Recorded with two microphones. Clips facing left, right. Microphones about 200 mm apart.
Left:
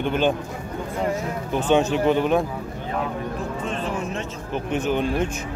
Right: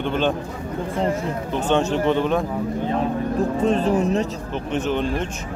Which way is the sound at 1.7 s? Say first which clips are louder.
Left 1 dB; 5° left (ahead or behind).